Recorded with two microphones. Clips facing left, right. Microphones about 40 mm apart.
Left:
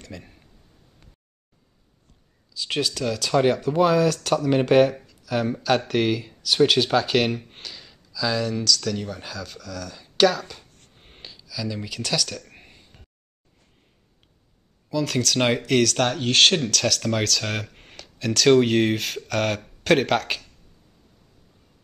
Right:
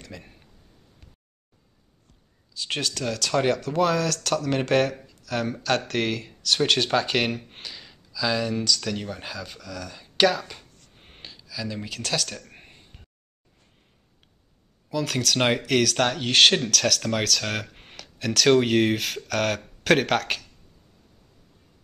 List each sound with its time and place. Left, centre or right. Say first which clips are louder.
0.0 s a sound: left 2 dB; centre
3.2 s speech: left 3 dB; centre
3.5 s speech: left 4 dB; centre
5.2 s a sound: left 3 dB; centre
5.6 s speech: left 3 dB; centre
9.0 s speech: left 1 dB; right
9.3 s speech: left 1 dB; centre
11.0 s gasp: even; centre
11.6 s speech: left 2 dB; centre
12.9 s a sound: even; centre
15.0 s speech: left 2 dB; centre